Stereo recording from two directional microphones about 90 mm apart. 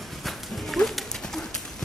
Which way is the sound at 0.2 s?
Centre (ahead or behind).